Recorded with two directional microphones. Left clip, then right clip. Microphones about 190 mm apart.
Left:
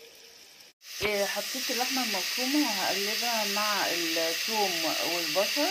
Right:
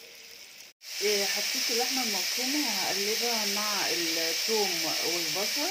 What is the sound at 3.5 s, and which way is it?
Speech, centre (ahead or behind).